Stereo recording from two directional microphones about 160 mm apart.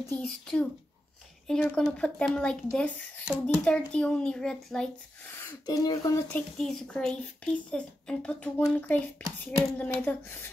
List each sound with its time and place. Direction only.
0.3 s speech: 5° left (ahead or behind)
5.3 s speech: 20° left (ahead or behind)
6.3 s speech: 5° left (ahead or behind)